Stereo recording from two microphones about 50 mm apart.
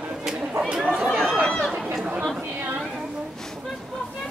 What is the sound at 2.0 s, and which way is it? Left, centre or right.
Speech, right.